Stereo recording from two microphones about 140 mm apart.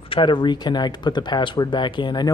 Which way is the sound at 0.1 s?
35° left (ahead or behind).